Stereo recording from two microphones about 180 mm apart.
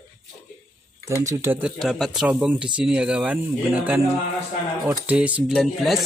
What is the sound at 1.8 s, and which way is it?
Speech, centre (ahead or behind).